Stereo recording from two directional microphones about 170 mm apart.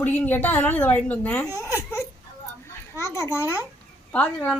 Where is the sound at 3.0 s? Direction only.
15° left (ahead or behind).